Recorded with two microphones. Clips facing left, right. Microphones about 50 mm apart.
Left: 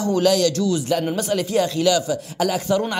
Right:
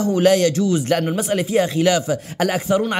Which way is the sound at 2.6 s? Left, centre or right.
Right.